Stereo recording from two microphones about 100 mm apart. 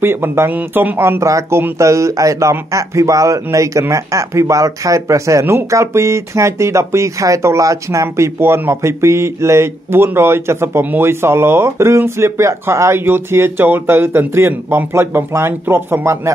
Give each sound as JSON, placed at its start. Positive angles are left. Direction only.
{"t": 0.0, "sound": "a man's voice", "side_deg": -25}